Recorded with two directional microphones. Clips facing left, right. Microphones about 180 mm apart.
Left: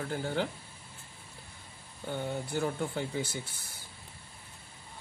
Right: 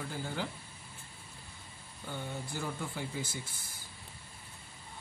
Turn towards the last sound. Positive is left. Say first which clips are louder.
# left 5 dB
turn(degrees=65)  # may be behind; listen again after turning